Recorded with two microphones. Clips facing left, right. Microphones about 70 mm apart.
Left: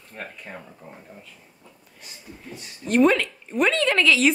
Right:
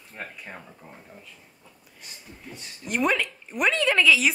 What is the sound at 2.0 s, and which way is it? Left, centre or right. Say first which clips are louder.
Speech: left 3 dB; centre.